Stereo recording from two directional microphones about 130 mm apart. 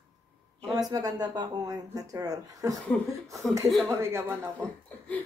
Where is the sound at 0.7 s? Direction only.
30° right (ahead or behind).